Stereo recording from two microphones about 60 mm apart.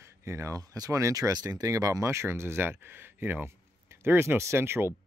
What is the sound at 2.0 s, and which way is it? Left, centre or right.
Speech, right.